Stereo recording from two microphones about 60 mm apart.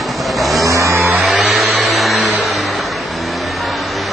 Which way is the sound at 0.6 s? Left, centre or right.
Right.